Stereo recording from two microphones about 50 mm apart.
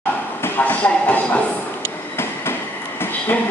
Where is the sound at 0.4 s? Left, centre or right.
Left.